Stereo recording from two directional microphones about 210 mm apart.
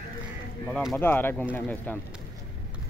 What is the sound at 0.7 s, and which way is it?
Speech, centre (ahead or behind).